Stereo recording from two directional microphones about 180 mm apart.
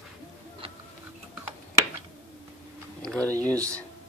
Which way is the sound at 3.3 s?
20° right (ahead or behind).